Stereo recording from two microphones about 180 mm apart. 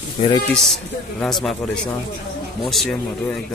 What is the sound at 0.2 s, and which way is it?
Speech, 35° left (ahead or behind).